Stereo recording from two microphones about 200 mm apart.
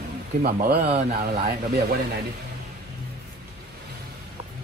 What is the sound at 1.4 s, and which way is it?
Speech, 50° right (ahead or behind).